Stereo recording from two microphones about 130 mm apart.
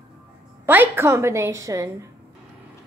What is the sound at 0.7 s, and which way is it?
A woman's voice, 15° right (ahead or behind).